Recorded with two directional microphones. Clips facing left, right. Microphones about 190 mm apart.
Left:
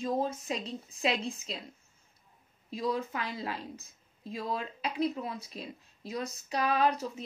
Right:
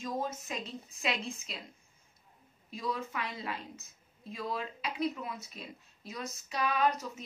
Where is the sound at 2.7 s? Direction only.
35° left (ahead or behind).